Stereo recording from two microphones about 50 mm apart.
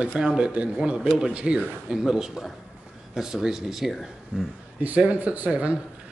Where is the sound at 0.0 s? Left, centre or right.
Right; by 4.0 s centre.